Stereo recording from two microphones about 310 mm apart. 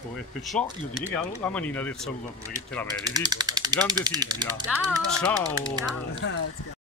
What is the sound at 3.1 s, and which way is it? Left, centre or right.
Speech, centre.